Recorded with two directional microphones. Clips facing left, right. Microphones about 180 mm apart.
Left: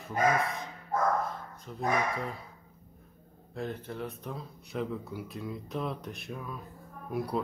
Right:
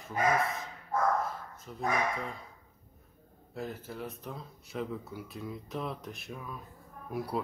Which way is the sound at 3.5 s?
5° right (ahead or behind).